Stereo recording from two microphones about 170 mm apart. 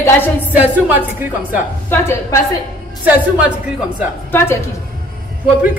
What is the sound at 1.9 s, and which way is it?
Speech, 15° left (ahead or behind).